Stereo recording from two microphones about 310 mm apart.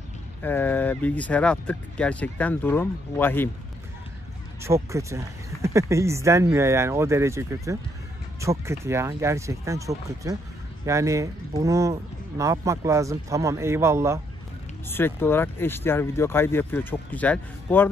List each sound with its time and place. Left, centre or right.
0.4 s speech: centre
4.6 s speech: centre
14.9 s speech: centre